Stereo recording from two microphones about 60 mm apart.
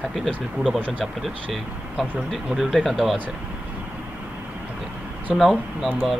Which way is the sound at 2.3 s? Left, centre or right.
Centre.